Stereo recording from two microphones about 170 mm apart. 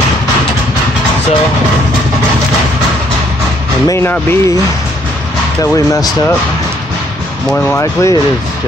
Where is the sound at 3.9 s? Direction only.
15° left (ahead or behind).